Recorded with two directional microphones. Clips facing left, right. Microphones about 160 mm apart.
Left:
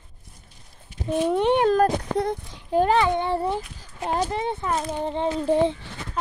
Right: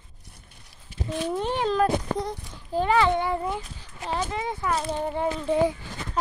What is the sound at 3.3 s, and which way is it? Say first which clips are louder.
Speech: left 3 dB; 35° left (ahead or behind).